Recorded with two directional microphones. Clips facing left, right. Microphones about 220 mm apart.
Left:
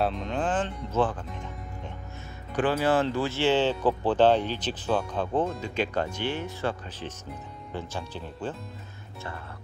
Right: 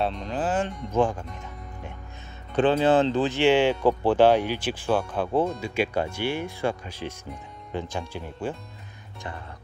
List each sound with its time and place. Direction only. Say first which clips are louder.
0.0 s speech: even; centre (ahead or behind)
2.5 s speech: right 4 dB; 20° right (ahead or behind)